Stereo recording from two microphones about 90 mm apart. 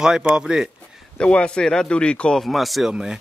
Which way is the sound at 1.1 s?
10° left (ahead or behind).